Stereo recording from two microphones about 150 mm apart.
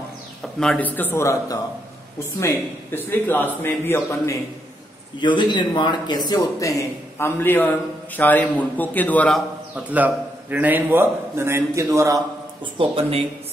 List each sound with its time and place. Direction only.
0.6 s a man's voice: 5° left (ahead or behind)
5.2 s a man's voice: 30° left (ahead or behind); by 9.4 s 10° left (ahead or behind)
9.8 s a man's voice: 10° right (ahead or behind)
12.7 s speech: 40° right (ahead or behind)